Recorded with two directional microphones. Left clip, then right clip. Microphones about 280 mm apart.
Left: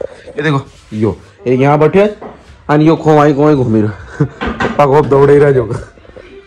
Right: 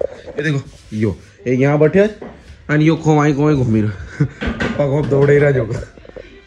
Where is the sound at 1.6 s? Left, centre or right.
Left.